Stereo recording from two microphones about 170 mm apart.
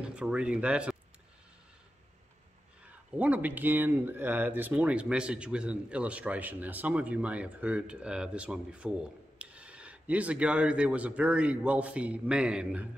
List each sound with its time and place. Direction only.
0.0 s speech: 5° right (ahead or behind)
3.1 s speech: 10° right (ahead or behind)